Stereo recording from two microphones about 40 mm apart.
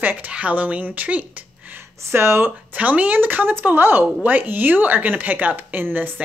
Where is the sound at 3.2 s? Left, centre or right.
Right.